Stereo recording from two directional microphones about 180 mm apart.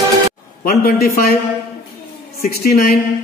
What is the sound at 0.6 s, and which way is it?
Speech, 55° left (ahead or behind).